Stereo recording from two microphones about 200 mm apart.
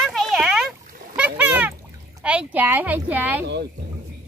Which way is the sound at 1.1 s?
5° right (ahead or behind).